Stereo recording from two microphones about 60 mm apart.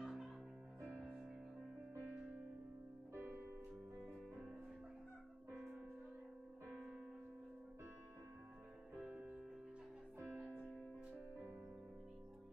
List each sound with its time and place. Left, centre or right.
0.0 s music: centre
4.0 s music: centre
10.4 s music: left